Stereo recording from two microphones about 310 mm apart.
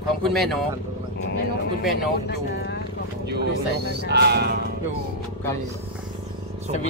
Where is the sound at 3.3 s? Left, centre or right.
Right.